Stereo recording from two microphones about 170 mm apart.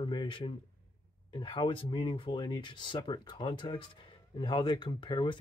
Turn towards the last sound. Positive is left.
turn(degrees=30)  # may be behind; listen again after turning